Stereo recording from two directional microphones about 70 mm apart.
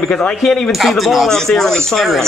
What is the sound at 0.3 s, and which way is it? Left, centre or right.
Speech, centre.